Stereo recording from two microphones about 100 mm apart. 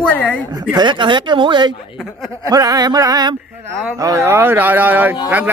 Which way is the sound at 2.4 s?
40° right (ahead or behind).